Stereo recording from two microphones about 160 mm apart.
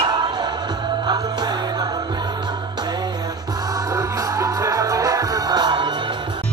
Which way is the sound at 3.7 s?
20° right (ahead or behind).